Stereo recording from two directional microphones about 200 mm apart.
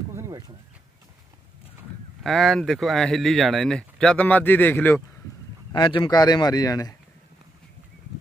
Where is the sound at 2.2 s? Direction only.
Centre (ahead or behind).